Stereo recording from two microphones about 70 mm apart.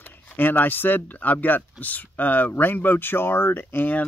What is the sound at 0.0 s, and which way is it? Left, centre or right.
Speech, left.